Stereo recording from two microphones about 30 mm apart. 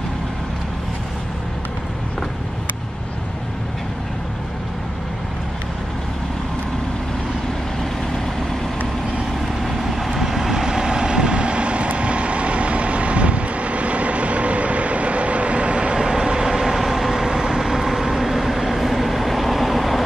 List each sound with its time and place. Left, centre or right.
9.6 s vehicle: centre; by 15.9 s right
15.9 s vehicle: centre